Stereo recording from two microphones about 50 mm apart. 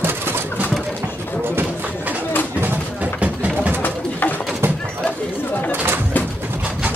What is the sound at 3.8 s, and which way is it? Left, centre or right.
Bird, left.